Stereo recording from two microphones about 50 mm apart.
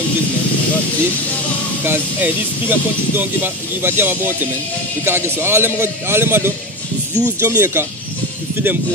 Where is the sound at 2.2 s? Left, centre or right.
Right.